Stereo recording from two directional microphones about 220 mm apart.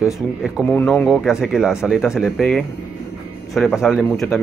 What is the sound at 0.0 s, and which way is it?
Speech, centre (ahead or behind).